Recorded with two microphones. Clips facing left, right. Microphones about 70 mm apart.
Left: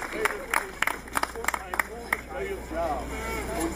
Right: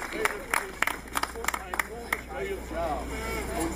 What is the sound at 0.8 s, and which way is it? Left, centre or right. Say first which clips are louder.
Applause: left 2 dB; centre.